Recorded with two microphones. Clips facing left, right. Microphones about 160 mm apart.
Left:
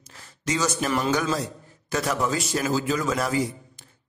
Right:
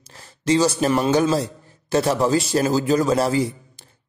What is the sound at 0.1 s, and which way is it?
Speech, 30° right (ahead or behind).